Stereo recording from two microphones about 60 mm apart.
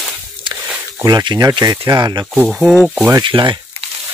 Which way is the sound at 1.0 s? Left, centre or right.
Right.